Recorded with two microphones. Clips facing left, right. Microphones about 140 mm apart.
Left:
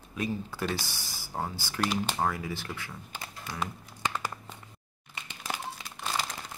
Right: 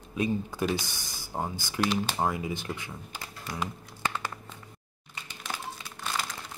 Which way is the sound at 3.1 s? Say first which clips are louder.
Right 1 dB; 5° right (ahead or behind).